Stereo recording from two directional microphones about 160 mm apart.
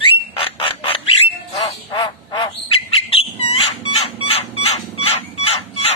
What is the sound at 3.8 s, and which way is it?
Chicken, 35° left (ahead or behind).